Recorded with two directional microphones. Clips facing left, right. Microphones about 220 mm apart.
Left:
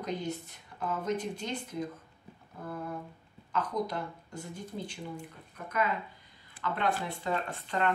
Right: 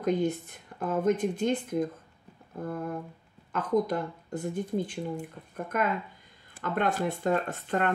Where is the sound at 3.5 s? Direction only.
50° right (ahead or behind).